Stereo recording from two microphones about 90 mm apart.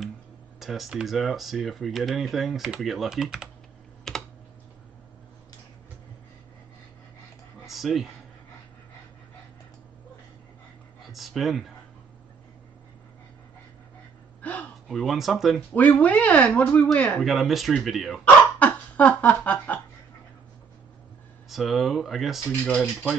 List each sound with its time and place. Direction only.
0.6 s speech: centre (ahead or behind)
4.1 s computer keyboard: 5° left (ahead or behind)
7.6 s a sound: centre (ahead or behind)
11.1 s speech: centre (ahead or behind)
14.4 s gasp: 15° left (ahead or behind)
14.9 s speech: centre (ahead or behind)
15.7 s speech: 20° left (ahead or behind)
17.2 s speech: centre (ahead or behind)
18.6 s a sound: 15° left (ahead or behind)
21.5 s speech: centre (ahead or behind)